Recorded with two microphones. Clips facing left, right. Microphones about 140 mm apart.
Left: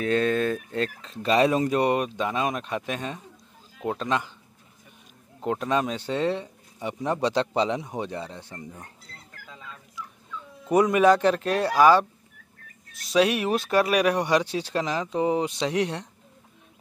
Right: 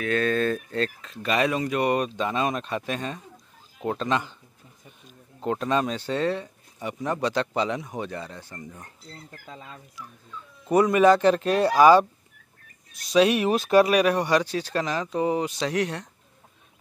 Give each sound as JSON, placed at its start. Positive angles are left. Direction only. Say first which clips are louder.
{"t": 0.0, "sound": "speech", "louder": "left 1 dB", "side_deg": 25}
{"t": 1.1, "sound": "speech", "louder": "left 4 dB", "side_deg": 30}
{"t": 2.0, "sound": "speech", "louder": "right 1 dB", "side_deg": 10}
{"t": 5.4, "sound": "speech", "louder": "right 1 dB", "side_deg": 10}
{"t": 9.5, "sound": "speech", "louder": "right 2 dB", "side_deg": -40}
{"t": 10.7, "sound": "speech", "louder": "right 1 dB", "side_deg": 10}
{"t": 13.1, "sound": "speech", "louder": "right 2 dB", "side_deg": 5}
{"t": 14.2, "sound": "speech", "louder": "even", "side_deg": 20}